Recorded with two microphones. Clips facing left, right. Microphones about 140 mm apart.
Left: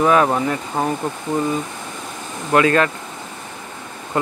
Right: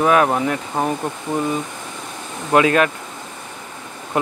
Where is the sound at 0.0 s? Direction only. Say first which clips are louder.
Even; 5° right (ahead or behind).